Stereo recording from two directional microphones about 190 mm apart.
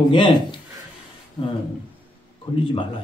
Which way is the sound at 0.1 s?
25° left (ahead or behind).